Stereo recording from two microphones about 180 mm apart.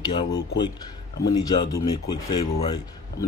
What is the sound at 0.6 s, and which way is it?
Speech, 20° left (ahead or behind).